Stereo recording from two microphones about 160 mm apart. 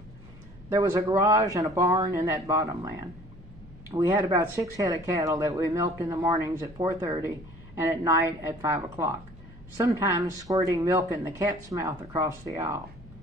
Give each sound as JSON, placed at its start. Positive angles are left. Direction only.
{"t": 0.7, "sound": "speech", "side_deg": -20}
{"t": 3.9, "sound": "speech", "side_deg": -20}
{"t": 12.3, "sound": "speech", "side_deg": -15}